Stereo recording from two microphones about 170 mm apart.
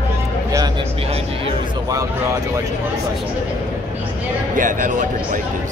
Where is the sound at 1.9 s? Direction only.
20° right (ahead or behind).